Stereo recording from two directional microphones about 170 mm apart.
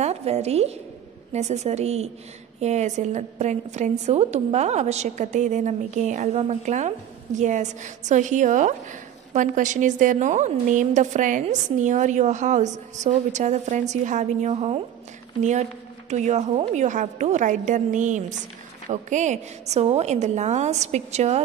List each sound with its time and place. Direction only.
0.0 s a woman's voice: 40° right (ahead or behind)
16.1 s a woman's voice: 40° right (ahead or behind)